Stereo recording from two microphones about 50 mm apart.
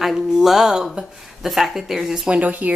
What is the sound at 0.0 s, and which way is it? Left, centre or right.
Speech, centre.